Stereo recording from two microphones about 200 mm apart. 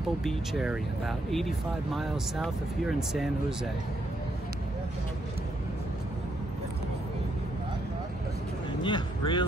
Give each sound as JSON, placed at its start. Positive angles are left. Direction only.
{"t": 0.2, "sound": "speech", "side_deg": 0}
{"t": 8.8, "sound": "speech", "side_deg": 25}